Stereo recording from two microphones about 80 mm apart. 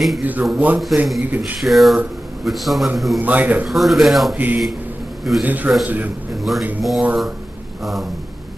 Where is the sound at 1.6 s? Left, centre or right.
Centre.